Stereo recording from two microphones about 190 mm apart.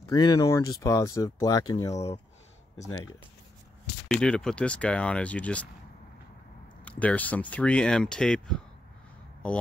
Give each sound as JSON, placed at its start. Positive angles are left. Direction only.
{"t": 0.1, "sound": "speech", "side_deg": 20}
{"t": 4.1, "sound": "speech", "side_deg": 5}
{"t": 6.8, "sound": "speech", "side_deg": 5}